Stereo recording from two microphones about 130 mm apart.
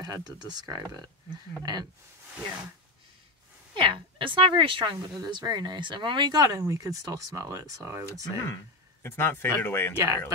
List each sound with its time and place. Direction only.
0.0 s a woman's voice: 30° right (ahead or behind)
3.7 s a woman's voice: 40° right (ahead or behind)
9.0 s speech: 15° left (ahead or behind)
9.9 s speech: 25° right (ahead or behind)